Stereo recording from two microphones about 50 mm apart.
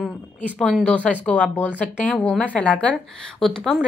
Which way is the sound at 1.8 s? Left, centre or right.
Centre.